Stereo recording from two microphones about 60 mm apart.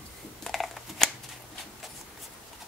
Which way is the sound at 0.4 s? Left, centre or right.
Centre.